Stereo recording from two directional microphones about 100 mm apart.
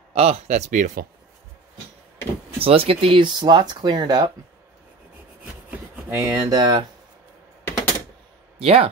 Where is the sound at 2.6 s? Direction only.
70° right (ahead or behind).